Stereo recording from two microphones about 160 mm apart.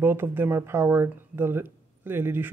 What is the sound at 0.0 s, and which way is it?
Speech, 15° right (ahead or behind).